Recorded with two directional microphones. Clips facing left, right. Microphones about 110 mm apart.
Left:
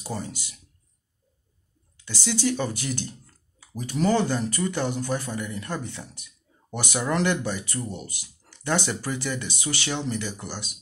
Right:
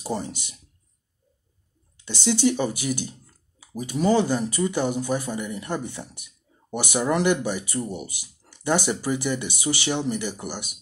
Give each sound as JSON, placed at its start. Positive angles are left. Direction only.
{"t": 0.0, "sound": "speech", "side_deg": -25}
{"t": 2.0, "sound": "speech", "side_deg": -20}